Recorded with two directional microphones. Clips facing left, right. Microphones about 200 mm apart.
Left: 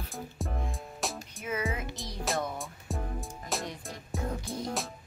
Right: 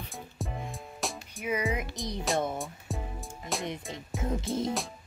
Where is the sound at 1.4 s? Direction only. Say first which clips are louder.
Right 3 dB; 15° right (ahead or behind).